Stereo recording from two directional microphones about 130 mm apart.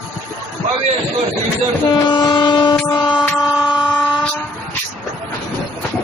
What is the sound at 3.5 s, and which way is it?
Vehicle, 30° left (ahead or behind).